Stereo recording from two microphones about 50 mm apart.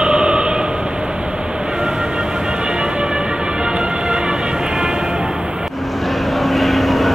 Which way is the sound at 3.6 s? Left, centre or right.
Centre.